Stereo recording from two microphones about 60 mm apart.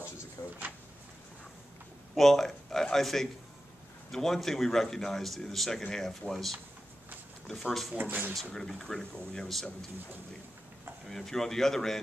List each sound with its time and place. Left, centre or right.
0.4 s a sound: left
2.1 s speech: centre
8.0 s speech: right
8.5 s speech: centre
11.1 s speech: centre